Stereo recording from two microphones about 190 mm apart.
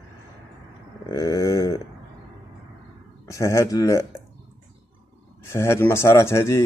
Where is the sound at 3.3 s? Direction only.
15° left (ahead or behind).